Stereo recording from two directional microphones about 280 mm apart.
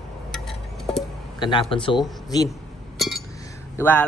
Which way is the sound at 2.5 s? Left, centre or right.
Centre.